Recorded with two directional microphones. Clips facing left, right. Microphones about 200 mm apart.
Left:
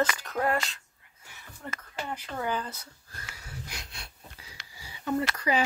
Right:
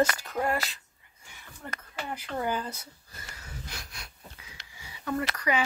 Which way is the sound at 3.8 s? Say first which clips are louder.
Even; 30° left (ahead or behind).